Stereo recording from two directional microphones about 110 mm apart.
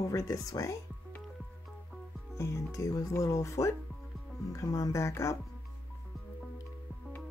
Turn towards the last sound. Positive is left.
turn(degrees=25)  # may be behind; listen again after turning